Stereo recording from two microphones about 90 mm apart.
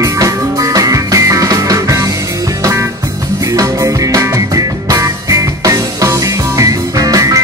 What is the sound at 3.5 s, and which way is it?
Music, 40° right (ahead or behind).